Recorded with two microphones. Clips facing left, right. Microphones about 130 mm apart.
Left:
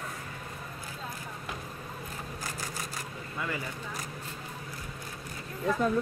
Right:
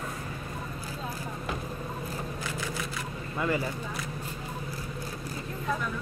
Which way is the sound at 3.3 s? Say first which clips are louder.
Right 7 dB; 35° right (ahead or behind).